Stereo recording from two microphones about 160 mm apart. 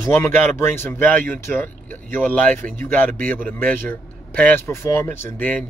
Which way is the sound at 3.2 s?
60° right (ahead or behind).